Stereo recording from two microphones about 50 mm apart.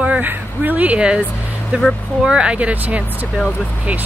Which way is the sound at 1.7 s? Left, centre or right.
Right.